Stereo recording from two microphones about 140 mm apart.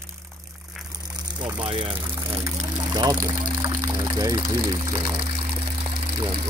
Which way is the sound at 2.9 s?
30° right (ahead or behind).